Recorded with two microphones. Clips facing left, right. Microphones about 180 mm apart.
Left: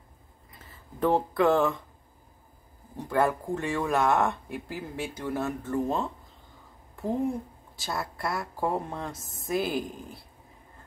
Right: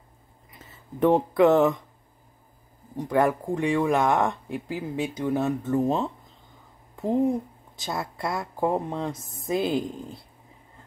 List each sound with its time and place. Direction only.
0.5 s speech: 20° right (ahead or behind)
3.0 s speech: 15° right (ahead or behind)
7.7 s speech: 20° right (ahead or behind)